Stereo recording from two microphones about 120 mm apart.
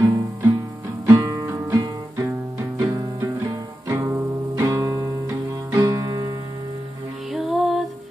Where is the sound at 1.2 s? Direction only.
30° right (ahead or behind).